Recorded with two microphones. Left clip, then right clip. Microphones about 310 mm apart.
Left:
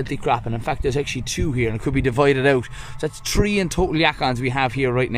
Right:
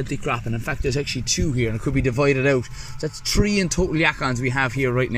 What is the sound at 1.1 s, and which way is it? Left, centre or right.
Speech, left.